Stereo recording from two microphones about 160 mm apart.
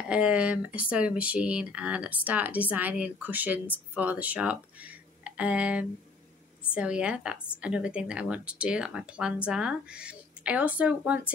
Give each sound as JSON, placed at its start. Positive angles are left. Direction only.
{"t": 0.1, "sound": "speech", "side_deg": -5}